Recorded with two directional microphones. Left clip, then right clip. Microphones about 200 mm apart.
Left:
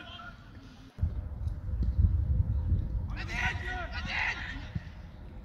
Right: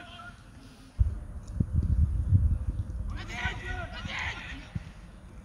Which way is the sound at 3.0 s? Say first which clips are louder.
Left 2 dB; 25° left (ahead or behind).